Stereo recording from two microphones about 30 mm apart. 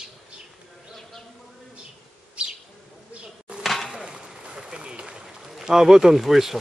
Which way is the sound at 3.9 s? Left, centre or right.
Right.